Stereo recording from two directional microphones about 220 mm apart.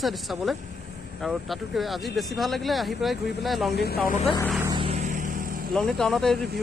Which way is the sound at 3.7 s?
45° left (ahead or behind).